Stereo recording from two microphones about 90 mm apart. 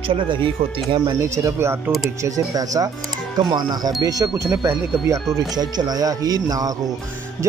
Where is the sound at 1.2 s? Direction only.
30° right (ahead or behind).